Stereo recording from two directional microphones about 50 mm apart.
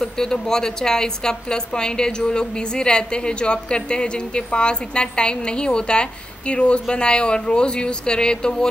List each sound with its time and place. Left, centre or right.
0.0 s a woman's voice: centre